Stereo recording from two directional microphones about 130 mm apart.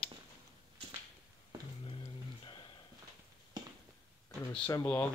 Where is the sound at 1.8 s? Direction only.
45° left (ahead or behind).